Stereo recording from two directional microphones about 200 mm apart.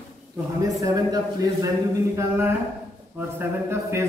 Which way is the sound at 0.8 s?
20° right (ahead or behind).